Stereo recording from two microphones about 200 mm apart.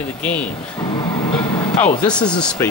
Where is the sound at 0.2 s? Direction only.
5° left (ahead or behind).